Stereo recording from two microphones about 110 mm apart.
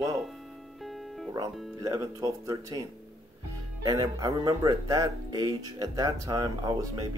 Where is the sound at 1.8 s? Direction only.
30° right (ahead or behind).